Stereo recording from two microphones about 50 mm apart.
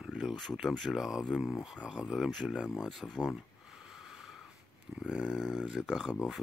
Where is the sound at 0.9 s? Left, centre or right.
Centre.